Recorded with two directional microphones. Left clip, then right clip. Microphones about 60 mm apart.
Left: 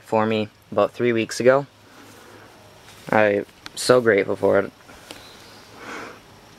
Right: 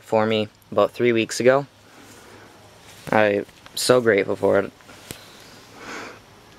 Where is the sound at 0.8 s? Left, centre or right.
Right.